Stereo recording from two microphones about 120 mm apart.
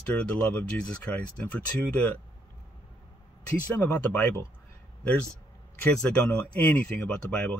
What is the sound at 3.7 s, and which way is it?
Speech, 15° left (ahead or behind).